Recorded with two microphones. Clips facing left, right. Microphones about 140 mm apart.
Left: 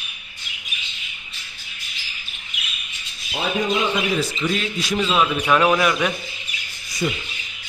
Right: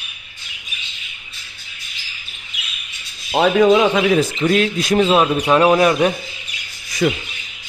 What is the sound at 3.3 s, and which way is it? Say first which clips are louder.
Speech: right 11 dB; 80° right.